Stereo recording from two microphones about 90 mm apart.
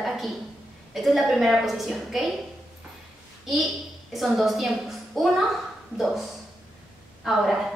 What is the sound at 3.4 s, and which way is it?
A woman's voice, centre (ahead or behind).